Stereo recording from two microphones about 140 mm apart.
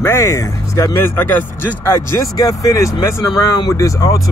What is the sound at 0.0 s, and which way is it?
Speech, 20° left (ahead or behind).